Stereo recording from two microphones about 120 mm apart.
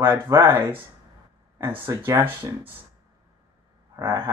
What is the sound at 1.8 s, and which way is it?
Speech, 15° right (ahead or behind).